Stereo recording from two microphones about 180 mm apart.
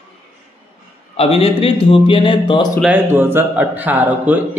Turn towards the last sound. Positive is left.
turn(degrees=-10)  # may be behind; listen again after turning